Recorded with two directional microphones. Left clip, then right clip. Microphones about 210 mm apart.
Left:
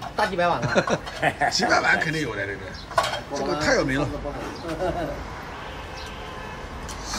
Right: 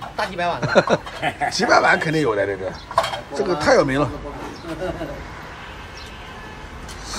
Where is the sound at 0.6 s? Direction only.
5° left (ahead or behind).